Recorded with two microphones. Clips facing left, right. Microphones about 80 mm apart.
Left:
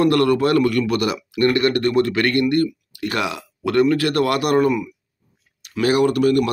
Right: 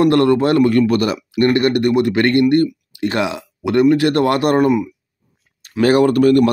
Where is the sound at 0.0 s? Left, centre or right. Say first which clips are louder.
Right 3 dB; right.